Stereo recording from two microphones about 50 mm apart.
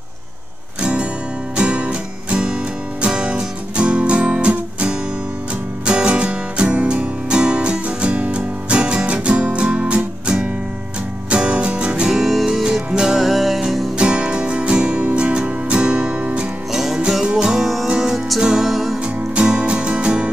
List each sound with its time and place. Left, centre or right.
1.6 s music: right
12.2 s music: centre
13.9 s music: right
16.7 s music: centre
17.6 s music: centre
19.3 s music: centre